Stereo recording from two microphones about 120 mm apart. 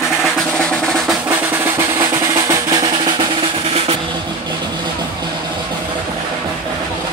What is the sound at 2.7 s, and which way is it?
Drum, 40° right (ahead or behind).